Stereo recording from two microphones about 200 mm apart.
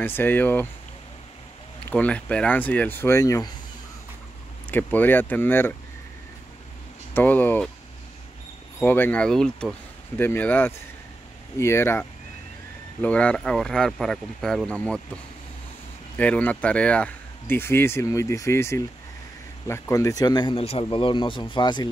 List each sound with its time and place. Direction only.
0.0 s speech: 10° left (ahead or behind)
1.9 s speech: 5° left (ahead or behind)
4.6 s speech: 10° left (ahead or behind)
7.2 s speech: 10° left (ahead or behind)
8.7 s speech: 10° left (ahead or behind)
16.2 s speech: 5° left (ahead or behind)